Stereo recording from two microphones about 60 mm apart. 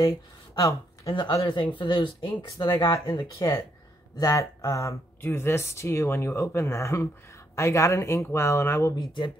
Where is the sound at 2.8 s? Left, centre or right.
Left.